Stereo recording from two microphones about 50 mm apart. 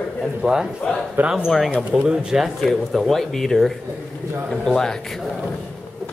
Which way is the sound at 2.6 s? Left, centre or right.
Centre.